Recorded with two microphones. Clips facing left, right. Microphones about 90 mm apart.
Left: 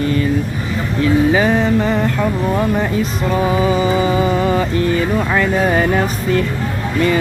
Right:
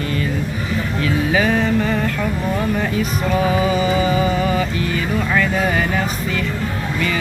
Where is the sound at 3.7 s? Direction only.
30° left (ahead or behind).